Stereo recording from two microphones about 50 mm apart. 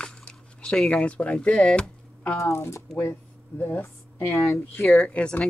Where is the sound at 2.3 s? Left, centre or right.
Left.